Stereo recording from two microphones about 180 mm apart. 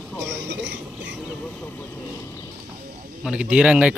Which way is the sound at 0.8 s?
5° right (ahead or behind).